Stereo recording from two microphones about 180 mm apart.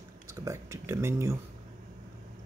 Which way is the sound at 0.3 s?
15° right (ahead or behind).